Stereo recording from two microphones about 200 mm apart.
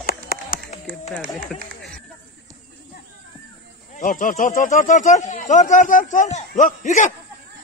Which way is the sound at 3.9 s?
40° left (ahead or behind).